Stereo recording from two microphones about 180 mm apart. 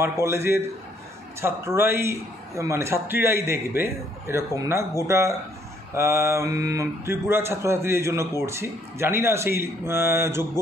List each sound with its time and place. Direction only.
0.0 s speech: 15° right (ahead or behind)